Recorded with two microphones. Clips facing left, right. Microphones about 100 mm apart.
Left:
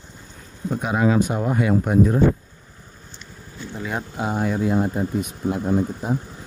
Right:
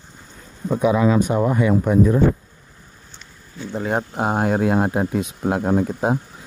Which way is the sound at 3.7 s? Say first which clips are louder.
Right 6 dB; 45° right (ahead or behind).